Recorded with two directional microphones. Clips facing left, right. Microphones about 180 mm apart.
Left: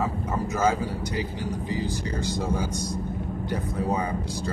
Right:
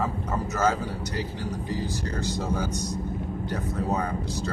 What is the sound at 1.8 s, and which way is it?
Speech, 10° left (ahead or behind).